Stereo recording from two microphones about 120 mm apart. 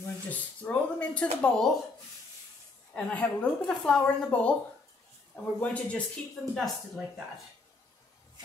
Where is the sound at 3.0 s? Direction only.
10° left (ahead or behind).